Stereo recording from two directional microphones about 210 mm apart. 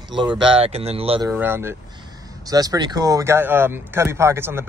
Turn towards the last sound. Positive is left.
turn(degrees=-10)  # may be behind; listen again after turning